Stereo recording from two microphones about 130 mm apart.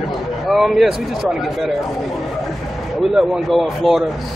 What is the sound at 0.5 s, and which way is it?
Speech, centre (ahead or behind).